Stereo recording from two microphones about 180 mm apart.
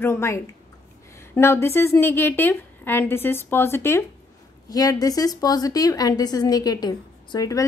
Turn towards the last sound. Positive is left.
turn(degrees=20)  # may be behind; listen again after turning